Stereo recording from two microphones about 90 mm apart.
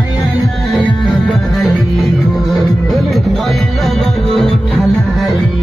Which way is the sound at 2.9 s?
Centre (ahead or behind).